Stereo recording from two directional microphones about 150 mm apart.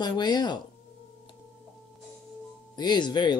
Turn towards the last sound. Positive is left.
turn(degrees=30)  # may be behind; listen again after turning